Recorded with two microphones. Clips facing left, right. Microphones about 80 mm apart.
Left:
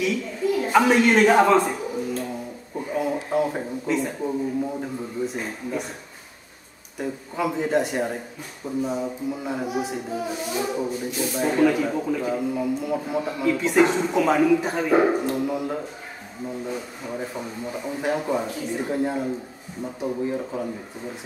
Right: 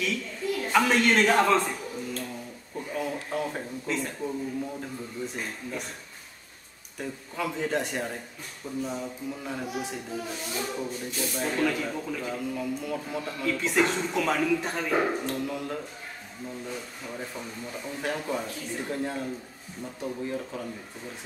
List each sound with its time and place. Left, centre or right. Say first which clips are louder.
0.0 s a sound: left 7 dB; centre
4.2 s speech: left 6 dB; left
7.0 s speech: left 6 dB; centre